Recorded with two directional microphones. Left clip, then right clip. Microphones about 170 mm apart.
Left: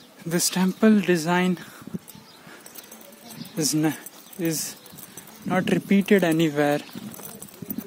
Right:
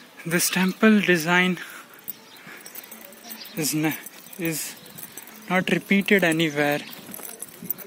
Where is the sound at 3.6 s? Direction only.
35° left (ahead or behind).